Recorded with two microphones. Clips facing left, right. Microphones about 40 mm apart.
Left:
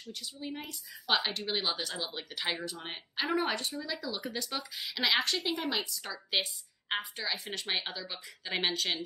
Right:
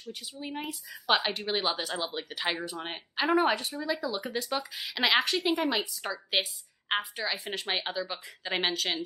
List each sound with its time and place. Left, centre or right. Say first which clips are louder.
0.1 s speech: right 2 dB; centre